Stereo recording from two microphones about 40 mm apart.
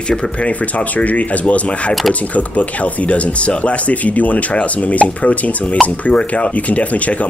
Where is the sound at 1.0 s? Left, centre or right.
Left.